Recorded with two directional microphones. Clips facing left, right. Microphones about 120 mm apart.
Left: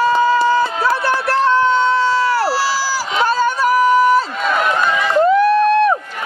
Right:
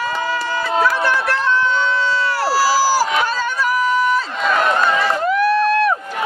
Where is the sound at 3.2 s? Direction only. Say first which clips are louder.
Left 5 dB; 40° left (ahead or behind).